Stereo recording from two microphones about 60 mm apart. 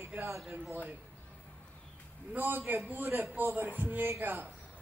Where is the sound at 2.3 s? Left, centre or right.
Right.